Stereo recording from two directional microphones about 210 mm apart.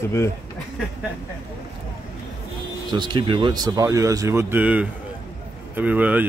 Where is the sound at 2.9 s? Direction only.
20° right (ahead or behind).